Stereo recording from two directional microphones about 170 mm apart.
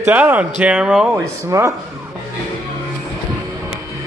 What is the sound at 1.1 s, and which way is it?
Speech, 15° right (ahead or behind).